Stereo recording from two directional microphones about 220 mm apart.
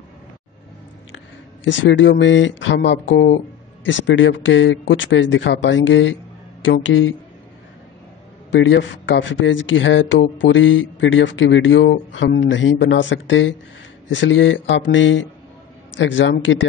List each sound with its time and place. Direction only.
1.6 s speech: 55° left (ahead or behind)
8.5 s speech: 55° left (ahead or behind)